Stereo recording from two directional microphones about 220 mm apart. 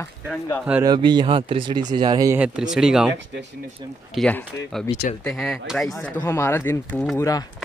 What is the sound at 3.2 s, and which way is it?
Speech, 55° right (ahead or behind).